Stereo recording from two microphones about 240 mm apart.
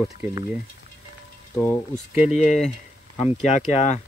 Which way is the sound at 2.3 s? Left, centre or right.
Left.